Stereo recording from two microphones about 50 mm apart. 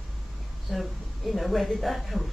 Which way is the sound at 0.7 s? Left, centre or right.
Centre.